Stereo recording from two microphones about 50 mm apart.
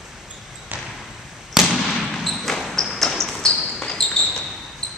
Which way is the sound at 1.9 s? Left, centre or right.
Centre.